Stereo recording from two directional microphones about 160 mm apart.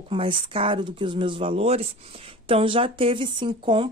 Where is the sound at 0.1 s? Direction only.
35° right (ahead or behind).